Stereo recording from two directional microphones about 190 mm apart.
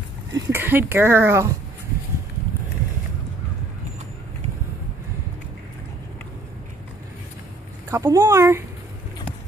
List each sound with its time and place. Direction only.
0.3 s speech: 10° right (ahead or behind)
7.9 s speech: 15° right (ahead or behind)